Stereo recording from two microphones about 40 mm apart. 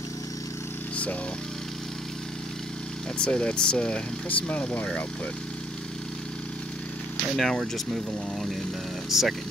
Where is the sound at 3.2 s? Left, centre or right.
Left.